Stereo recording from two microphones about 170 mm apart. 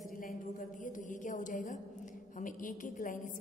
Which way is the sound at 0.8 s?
50° left (ahead or behind).